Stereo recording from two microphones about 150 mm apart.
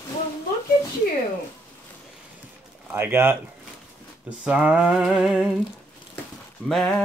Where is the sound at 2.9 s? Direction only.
15° right (ahead or behind).